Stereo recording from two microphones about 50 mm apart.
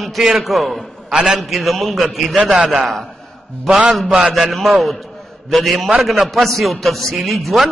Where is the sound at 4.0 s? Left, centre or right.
Centre.